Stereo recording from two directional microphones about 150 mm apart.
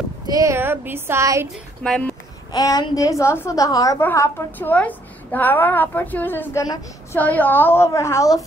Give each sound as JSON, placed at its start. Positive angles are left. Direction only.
{"t": 0.3, "sound": "speech", "side_deg": -20}
{"t": 1.5, "sound": "a woman's voice", "side_deg": 5}
{"t": 2.5, "sound": "a woman's voice", "side_deg": 25}
{"t": 6.6, "sound": "a woman's voice", "side_deg": 25}
{"t": 7.2, "sound": "a woman's voice", "side_deg": 10}